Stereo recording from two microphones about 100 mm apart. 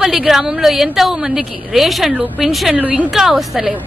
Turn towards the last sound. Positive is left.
turn(degrees=0)  # may be behind; listen again after turning